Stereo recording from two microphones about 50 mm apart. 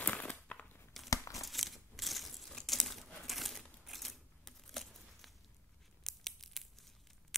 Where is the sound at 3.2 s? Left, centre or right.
Centre.